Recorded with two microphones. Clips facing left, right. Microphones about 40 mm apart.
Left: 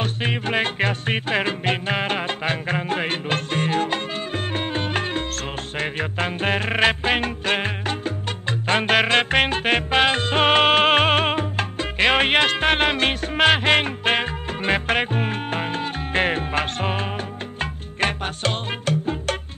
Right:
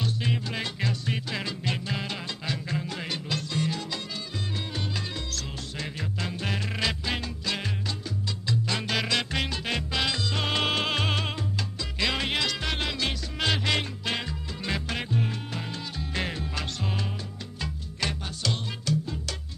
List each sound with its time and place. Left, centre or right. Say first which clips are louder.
0.0 s music: left 5 dB; left